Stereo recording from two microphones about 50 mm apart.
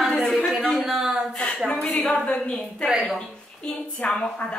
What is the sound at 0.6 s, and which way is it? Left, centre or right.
Speech, centre.